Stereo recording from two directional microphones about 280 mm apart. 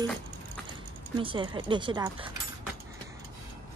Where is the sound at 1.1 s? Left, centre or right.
Centre.